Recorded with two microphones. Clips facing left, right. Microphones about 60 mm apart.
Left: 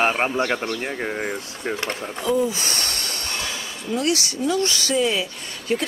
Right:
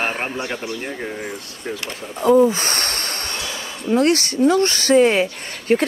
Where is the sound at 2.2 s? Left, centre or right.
Right.